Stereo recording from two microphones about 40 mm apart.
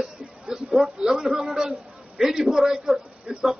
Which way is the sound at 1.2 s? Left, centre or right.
Centre.